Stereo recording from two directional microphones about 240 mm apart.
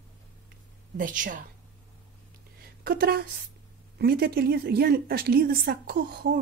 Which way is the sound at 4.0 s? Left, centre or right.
Right.